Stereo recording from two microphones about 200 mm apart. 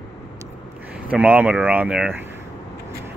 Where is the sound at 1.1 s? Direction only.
5° right (ahead or behind).